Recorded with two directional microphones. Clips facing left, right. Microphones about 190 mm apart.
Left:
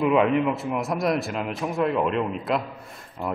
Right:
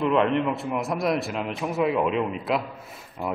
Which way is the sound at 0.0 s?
5° left (ahead or behind).